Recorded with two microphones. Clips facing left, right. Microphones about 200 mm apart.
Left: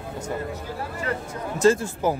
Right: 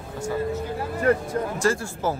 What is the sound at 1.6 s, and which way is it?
Speech, 20° left (ahead or behind).